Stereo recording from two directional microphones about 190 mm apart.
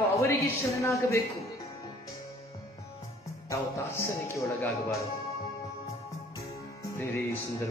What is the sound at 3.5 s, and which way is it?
Speech, 15° left (ahead or behind).